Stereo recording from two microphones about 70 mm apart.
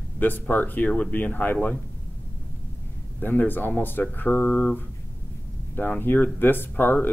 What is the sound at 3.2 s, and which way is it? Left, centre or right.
Speech, left.